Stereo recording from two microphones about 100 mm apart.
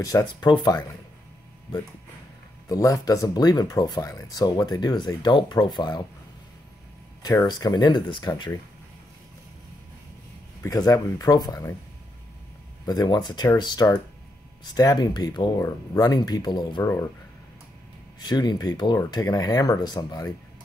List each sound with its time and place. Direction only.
0.0 s speech: 40° left (ahead or behind)
2.7 s speech: 35° left (ahead or behind)
7.2 s speech: 40° left (ahead or behind)
10.6 s speech: 35° left (ahead or behind)
12.8 s speech: 40° left (ahead or behind)
16.8 s speech: 30° left (ahead or behind)
18.2 s speech: 45° left (ahead or behind)